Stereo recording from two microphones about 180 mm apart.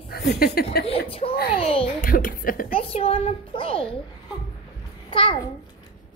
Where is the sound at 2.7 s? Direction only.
35° left (ahead or behind).